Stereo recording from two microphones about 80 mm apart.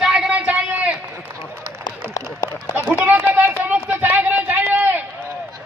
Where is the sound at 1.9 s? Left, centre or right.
Left.